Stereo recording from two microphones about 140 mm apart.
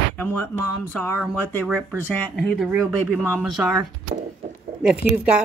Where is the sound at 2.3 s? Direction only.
Centre (ahead or behind).